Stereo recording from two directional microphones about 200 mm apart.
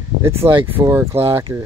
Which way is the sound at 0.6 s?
10° right (ahead or behind).